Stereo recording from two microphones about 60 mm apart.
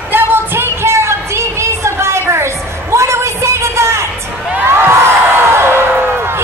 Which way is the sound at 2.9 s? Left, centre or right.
Right.